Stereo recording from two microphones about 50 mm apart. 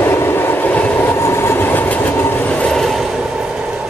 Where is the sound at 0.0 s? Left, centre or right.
Left.